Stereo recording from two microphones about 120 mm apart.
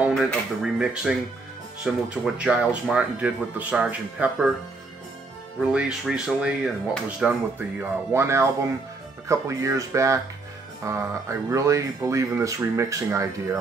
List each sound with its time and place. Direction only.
0.1 s speech: centre (ahead or behind)
5.6 s speech: 10° right (ahead or behind)
7.8 s speech: 20° right (ahead or behind)